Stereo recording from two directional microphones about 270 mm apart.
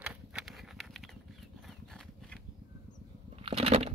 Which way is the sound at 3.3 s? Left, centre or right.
Right.